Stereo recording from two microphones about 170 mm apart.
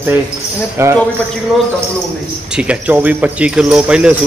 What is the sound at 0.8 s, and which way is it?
Speech, 15° right (ahead or behind).